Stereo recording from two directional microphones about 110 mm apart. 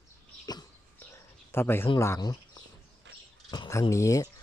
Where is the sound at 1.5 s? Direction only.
20° left (ahead or behind).